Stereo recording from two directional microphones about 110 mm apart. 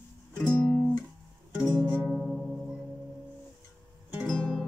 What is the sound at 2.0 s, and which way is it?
Music, 5° left (ahead or behind).